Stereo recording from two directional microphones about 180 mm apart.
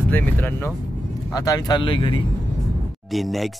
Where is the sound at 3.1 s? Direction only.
Centre (ahead or behind).